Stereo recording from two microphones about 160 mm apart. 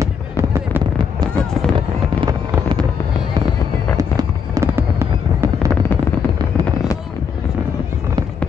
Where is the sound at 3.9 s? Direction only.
20° right (ahead or behind).